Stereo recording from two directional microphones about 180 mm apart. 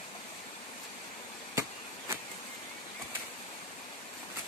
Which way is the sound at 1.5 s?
20° right (ahead or behind).